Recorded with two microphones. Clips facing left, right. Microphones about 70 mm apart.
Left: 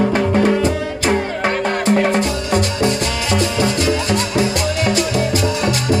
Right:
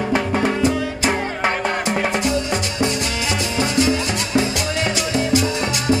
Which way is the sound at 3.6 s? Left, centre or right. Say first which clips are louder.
Left 1 dB; right.